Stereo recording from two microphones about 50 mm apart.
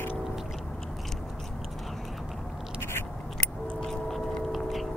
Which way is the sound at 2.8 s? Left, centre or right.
Left.